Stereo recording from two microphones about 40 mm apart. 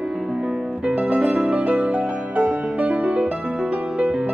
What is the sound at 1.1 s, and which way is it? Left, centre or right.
Music, centre.